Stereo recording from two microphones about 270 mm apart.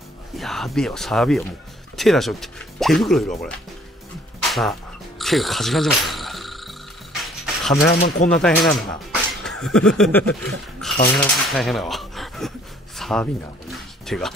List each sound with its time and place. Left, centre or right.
0.4 s speech: centre
4.4 s music: centre
5.2 s cricket: centre
7.2 s a sound: centre
7.9 s speech: left
8.3 s speech: centre
10.5 s a sound: centre